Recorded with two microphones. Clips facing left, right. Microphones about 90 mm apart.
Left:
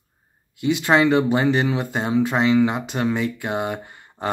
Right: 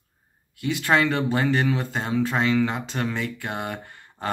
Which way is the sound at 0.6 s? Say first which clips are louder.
Left 4 dB; 20° left (ahead or behind).